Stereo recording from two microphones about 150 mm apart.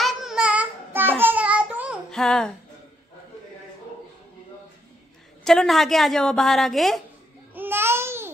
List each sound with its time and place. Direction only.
0.0 s child singing: 5° right (ahead or behind)
1.2 s a sound: 10° right (ahead or behind)
2.0 s speech: 5° left (ahead or behind)
5.4 s a woman's voice: 5° left (ahead or behind)
7.5 s babbling: 15° right (ahead or behind)